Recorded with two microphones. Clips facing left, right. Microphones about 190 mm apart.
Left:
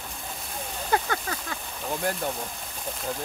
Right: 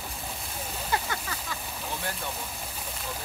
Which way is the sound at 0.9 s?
50° left (ahead or behind).